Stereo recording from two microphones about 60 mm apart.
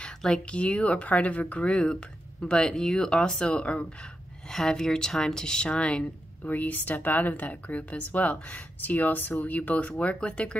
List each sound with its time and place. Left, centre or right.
0.0 s speech: centre